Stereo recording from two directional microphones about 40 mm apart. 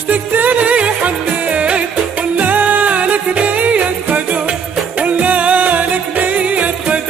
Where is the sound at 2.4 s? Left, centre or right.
Right.